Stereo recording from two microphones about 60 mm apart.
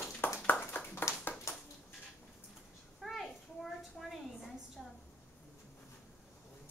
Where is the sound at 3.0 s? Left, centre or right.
Centre.